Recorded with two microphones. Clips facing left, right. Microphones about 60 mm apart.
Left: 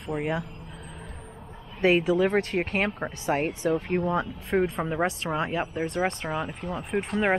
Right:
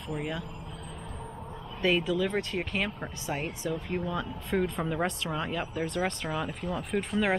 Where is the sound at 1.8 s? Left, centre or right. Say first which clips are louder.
Left 5 dB; left.